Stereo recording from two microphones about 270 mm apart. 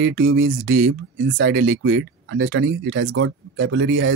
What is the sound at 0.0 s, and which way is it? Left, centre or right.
Speech, right.